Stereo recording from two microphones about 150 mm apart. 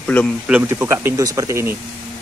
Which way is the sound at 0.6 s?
15° right (ahead or behind).